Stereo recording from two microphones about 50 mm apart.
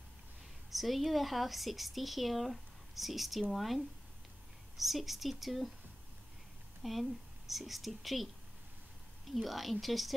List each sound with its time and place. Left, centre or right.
0.7 s speech: centre
6.8 s speech: centre
9.3 s speech: centre